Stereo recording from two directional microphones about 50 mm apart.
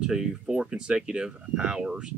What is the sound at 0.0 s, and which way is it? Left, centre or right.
Speech, centre.